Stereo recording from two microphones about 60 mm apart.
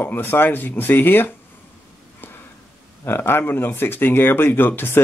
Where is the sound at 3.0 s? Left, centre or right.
Left.